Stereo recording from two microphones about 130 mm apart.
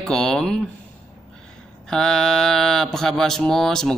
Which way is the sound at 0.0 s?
5° left (ahead or behind).